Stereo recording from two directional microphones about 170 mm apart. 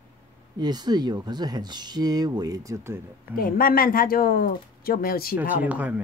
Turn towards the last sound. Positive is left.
turn(degrees=-10)  # may be behind; listen again after turning